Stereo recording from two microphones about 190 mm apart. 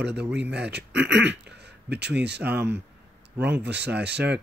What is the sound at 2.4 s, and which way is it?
Speech, 5° right (ahead or behind).